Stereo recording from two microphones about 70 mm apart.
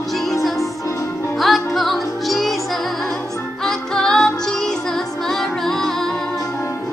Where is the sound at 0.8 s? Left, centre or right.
Left.